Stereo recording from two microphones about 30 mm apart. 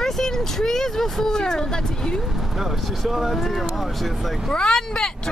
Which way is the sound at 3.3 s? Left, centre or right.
Centre.